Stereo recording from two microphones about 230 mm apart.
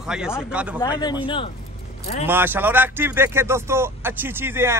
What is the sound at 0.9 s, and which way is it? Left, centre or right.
Speech, centre.